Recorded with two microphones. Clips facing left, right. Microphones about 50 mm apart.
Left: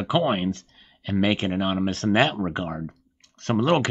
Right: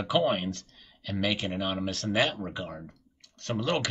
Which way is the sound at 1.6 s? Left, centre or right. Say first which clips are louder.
Left 6 dB; centre.